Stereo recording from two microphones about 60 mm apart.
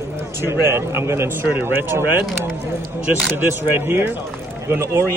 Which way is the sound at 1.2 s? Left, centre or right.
Right.